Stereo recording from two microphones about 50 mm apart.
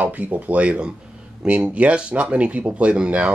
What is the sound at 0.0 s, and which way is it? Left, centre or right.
Speech, right.